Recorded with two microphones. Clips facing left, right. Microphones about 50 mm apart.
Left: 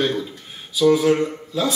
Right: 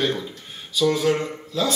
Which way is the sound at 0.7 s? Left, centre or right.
Centre.